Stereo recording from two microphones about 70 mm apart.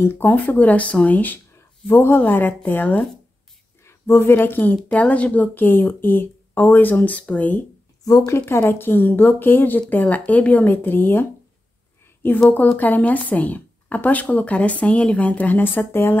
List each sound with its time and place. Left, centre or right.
0.0 s a woman's voice: left
8.3 s speech: left